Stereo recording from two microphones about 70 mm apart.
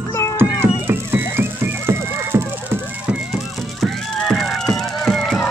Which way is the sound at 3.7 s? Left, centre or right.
Centre.